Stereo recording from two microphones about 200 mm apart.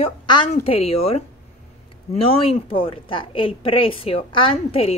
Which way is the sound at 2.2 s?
30° left (ahead or behind).